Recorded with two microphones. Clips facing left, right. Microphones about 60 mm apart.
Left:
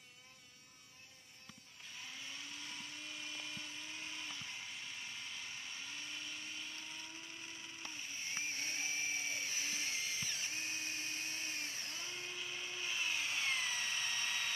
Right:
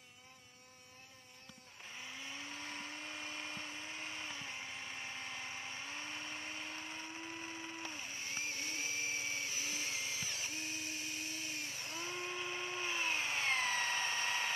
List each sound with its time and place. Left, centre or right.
2.3 s blender: right
9.0 s drill: centre
10.5 s drill: left
11.8 s tools: right